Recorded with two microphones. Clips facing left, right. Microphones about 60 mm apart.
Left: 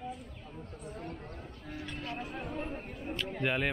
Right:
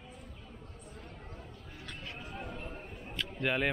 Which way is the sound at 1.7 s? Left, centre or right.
Left.